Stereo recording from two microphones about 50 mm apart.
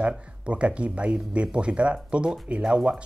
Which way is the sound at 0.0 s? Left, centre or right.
Right.